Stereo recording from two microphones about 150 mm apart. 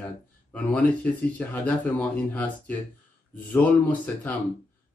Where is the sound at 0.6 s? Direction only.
10° left (ahead or behind).